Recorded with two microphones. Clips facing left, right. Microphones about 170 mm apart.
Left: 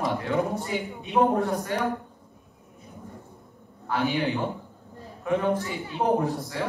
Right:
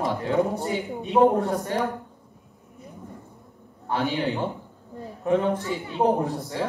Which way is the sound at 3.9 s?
35° right (ahead or behind).